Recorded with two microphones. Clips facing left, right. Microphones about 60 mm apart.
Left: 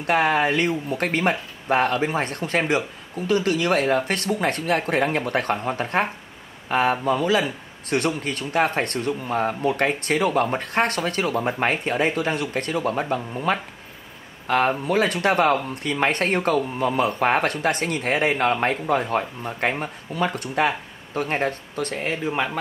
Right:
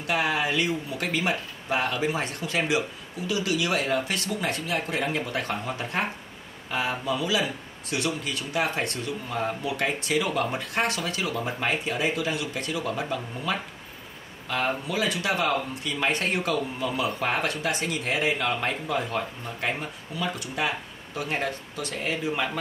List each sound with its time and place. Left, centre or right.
0.0 s a man's voice: left